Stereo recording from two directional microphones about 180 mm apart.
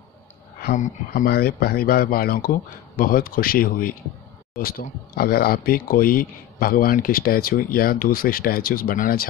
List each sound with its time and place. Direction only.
0.6 s speech: 50° left (ahead or behind)